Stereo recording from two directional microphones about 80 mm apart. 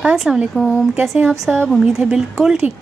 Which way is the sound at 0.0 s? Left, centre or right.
Centre.